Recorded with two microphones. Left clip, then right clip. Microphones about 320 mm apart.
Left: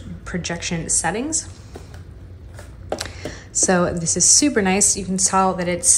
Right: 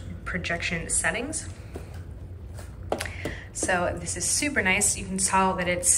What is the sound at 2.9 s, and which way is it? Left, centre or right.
Speech, centre.